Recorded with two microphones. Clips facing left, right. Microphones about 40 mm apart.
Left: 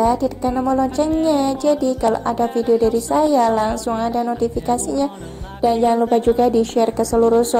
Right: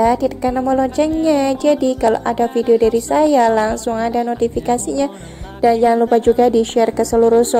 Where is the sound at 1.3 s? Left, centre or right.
Right.